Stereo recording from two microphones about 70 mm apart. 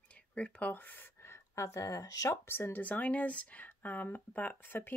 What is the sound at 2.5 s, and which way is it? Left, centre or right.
Speech, left.